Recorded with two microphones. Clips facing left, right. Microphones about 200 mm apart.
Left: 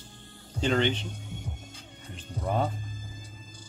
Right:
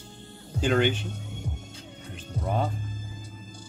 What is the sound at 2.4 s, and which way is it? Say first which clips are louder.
Music: even; centre (ahead or behind).